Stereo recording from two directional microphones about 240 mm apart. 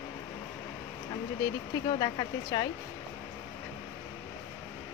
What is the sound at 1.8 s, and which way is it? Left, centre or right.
Speech, centre.